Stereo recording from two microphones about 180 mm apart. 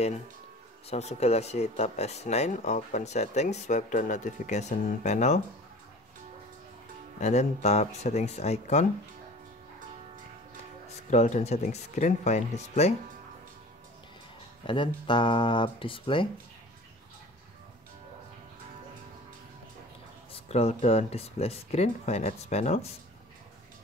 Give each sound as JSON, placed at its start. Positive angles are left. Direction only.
{"t": 0.8, "sound": "speech", "side_deg": 35}
{"t": 7.2, "sound": "speech", "side_deg": 40}
{"t": 11.1, "sound": "speech", "side_deg": 40}
{"t": 14.7, "sound": "speech", "side_deg": 25}
{"t": 20.3, "sound": "speech", "side_deg": 35}